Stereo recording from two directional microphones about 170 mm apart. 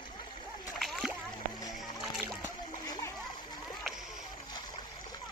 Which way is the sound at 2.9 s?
20° left (ahead or behind).